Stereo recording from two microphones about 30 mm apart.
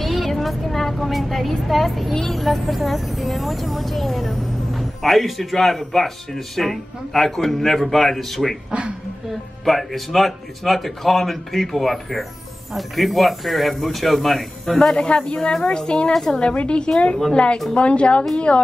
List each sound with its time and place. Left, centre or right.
0.0 s vehicle: centre
0.4 s speech: centre
9.7 s speech: centre
15.0 s a woman's voice: left
16.1 s speech: centre
16.6 s a woman's voice: left